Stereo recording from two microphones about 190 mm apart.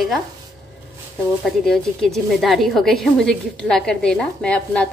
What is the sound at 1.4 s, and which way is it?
A woman's voice, centre (ahead or behind).